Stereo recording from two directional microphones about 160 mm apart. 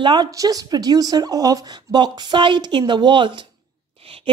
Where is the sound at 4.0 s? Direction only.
35° right (ahead or behind).